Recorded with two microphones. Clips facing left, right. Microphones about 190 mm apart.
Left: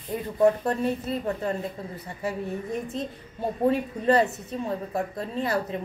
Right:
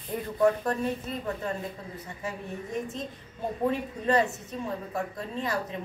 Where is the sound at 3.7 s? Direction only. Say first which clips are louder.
Left 5 dB; 35° left (ahead or behind).